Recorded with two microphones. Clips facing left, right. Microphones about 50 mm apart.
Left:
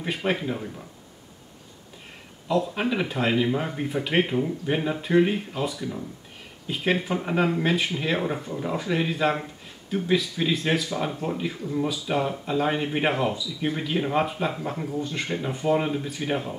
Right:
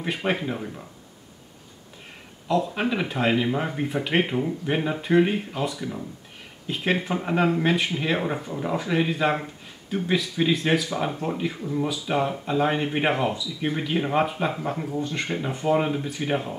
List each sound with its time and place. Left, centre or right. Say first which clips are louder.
0.0 s speech: even; centre
2.4 s speech: right 1 dB; centre